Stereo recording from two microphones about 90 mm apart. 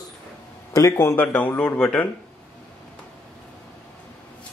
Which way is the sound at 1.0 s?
25° left (ahead or behind).